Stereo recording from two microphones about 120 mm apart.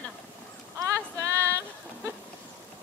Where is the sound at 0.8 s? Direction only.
25° right (ahead or behind).